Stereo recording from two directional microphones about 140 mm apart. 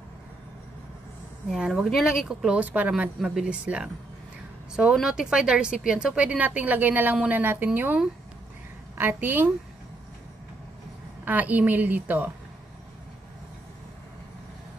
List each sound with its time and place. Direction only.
1.5 s speech: centre (ahead or behind)
11.2 s speech: 10° right (ahead or behind)